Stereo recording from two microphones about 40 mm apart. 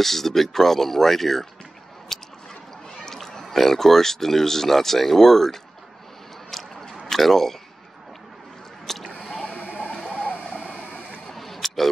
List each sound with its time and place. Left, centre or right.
0.0 s speech: centre
2.1 s squish: centre
3.1 s speech: centre
6.5 s biting: centre
7.1 s speech: centre
8.9 s a sound: centre
9.2 s squish: left
9.6 s a sound: right
10.8 s printer: right
11.3 s a sound: centre